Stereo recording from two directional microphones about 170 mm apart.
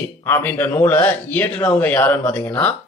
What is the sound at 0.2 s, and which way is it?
A man's voice, 10° left (ahead or behind).